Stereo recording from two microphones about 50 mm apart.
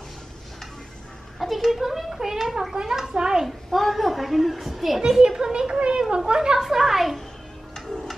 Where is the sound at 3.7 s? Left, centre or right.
Centre.